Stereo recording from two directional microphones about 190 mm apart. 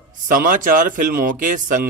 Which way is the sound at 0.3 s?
45° right (ahead or behind).